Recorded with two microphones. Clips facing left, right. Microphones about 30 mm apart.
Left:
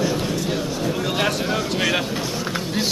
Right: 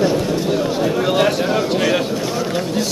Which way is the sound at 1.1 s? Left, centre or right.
Centre.